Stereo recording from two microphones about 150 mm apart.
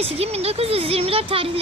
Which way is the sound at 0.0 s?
45° right (ahead or behind).